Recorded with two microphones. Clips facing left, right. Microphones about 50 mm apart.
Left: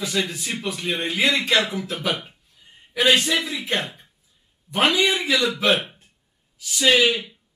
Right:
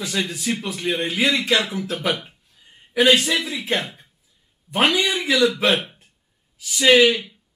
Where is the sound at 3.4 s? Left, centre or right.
Centre.